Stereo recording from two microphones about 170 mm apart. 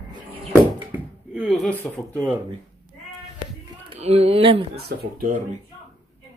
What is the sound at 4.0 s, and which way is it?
Speech, 35° right (ahead or behind).